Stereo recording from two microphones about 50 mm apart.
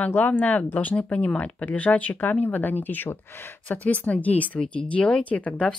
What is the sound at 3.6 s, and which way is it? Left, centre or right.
Speech, left.